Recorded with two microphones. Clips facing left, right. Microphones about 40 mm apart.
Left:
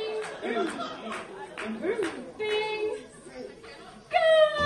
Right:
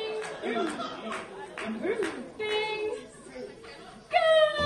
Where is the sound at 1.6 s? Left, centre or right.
Centre.